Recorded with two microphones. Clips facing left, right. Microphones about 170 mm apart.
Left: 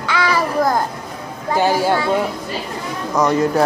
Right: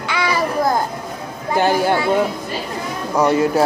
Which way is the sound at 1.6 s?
55° right (ahead or behind).